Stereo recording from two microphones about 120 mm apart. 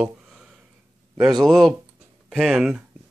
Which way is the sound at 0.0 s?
5° right (ahead or behind).